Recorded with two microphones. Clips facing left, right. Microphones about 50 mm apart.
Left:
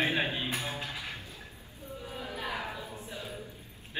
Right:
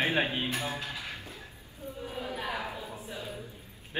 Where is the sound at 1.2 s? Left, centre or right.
Right.